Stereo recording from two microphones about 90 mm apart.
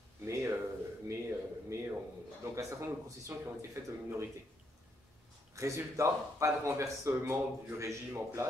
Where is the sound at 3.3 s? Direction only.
30° right (ahead or behind).